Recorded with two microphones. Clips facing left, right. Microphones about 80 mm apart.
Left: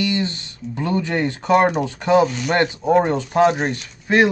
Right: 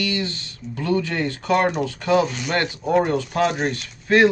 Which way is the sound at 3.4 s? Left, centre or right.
Centre.